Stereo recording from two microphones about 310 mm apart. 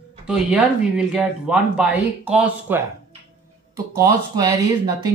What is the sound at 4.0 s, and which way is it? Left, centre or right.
Speech, centre.